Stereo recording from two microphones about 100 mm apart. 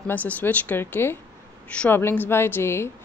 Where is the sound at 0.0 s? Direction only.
15° left (ahead or behind).